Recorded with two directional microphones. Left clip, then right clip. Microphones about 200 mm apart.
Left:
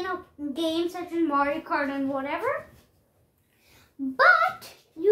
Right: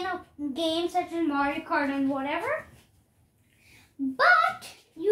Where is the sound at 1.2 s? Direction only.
10° left (ahead or behind).